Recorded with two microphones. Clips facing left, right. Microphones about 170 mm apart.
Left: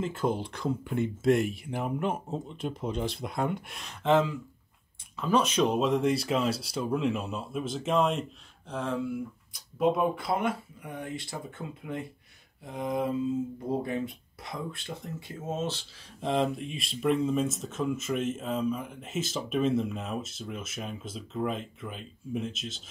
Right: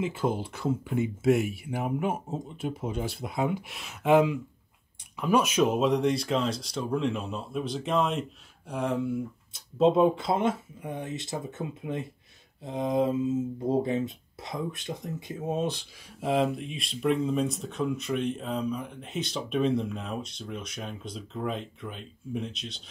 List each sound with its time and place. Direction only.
0.0 s speech: 5° right (ahead or behind)
8.6 s speech: 15° right (ahead or behind)
9.5 s speech: 25° right (ahead or behind); by 22.8 s centre (ahead or behind)